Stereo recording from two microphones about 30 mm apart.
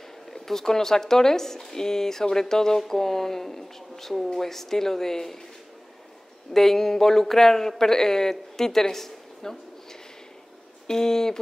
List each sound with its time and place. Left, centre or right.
0.3 s a man's voice: centre
6.5 s a man's voice: centre
10.9 s a man's voice: centre